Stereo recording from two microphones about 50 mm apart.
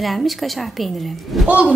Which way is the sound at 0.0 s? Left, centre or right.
Centre.